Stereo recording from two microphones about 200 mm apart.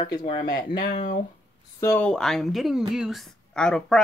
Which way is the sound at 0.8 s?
40° left (ahead or behind).